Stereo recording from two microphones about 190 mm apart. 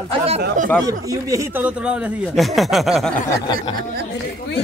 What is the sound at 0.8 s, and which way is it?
Speech, 15° right (ahead or behind).